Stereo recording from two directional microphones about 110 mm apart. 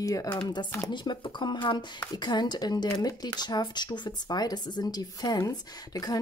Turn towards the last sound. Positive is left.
turn(degrees=35)  # may be behind; listen again after turning